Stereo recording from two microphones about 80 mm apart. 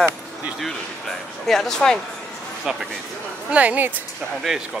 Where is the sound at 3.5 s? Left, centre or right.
Centre.